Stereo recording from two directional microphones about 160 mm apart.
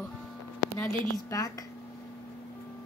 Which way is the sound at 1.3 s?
20° left (ahead or behind).